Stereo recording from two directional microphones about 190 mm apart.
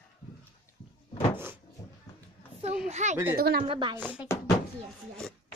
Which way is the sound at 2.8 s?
35° right (ahead or behind).